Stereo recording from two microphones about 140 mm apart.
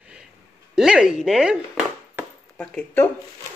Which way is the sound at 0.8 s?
5° right (ahead or behind).